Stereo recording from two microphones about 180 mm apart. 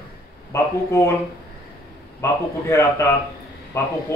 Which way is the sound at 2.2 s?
15° left (ahead or behind).